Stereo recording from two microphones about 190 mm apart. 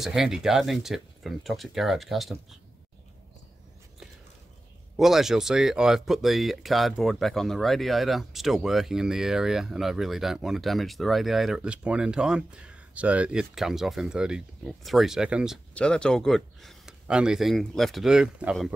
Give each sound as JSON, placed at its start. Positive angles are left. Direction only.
{"t": 0.0, "sound": "speech", "side_deg": 0}
{"t": 4.9, "sound": "speech", "side_deg": 0}